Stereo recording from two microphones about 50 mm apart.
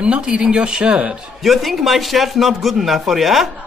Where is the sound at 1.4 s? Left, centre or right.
Centre.